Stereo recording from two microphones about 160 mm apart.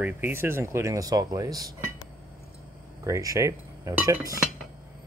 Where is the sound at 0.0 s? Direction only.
15° right (ahead or behind).